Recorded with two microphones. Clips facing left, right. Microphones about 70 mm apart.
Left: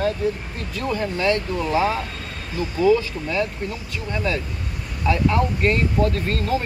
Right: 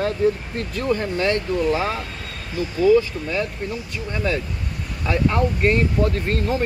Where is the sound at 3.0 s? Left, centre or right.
Right.